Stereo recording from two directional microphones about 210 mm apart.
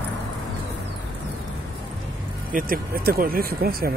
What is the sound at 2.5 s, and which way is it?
Speech, 45° right (ahead or behind).